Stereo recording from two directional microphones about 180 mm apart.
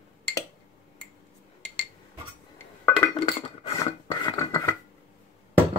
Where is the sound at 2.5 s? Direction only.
10° left (ahead or behind).